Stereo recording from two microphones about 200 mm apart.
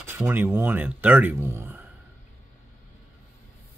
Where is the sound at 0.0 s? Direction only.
10° right (ahead or behind).